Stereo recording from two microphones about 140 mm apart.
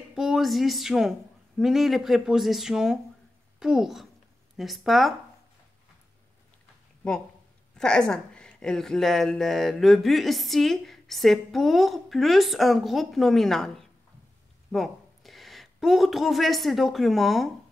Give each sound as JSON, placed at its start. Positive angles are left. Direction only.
{"t": 0.1, "sound": "a woman's voice", "side_deg": -5}
{"t": 7.7, "sound": "a woman's voice", "side_deg": 5}